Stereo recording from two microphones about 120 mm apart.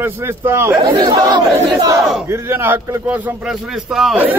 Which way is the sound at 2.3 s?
20° right (ahead or behind).